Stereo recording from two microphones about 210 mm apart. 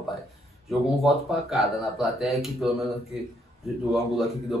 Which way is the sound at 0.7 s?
Centre (ahead or behind).